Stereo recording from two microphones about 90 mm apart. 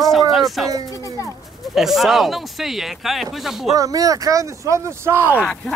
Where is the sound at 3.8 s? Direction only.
40° right (ahead or behind).